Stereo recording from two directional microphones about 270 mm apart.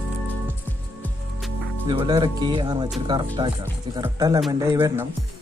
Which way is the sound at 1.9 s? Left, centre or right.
Centre.